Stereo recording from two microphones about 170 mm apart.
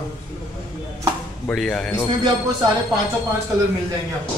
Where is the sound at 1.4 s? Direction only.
5° left (ahead or behind).